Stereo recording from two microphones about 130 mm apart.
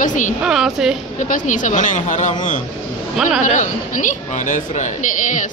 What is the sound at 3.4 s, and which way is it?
A woman's voice, 80° left.